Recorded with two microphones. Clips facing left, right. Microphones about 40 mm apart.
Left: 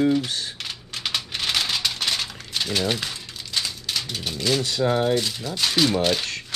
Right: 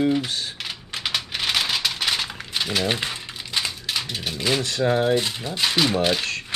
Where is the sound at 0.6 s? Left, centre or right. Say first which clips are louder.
Right 1 dB; centre.